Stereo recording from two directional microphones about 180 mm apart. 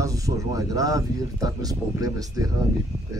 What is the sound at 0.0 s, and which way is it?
Speech, 20° right (ahead or behind).